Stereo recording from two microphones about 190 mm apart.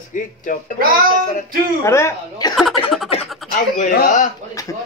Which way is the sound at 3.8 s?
45° left (ahead or behind).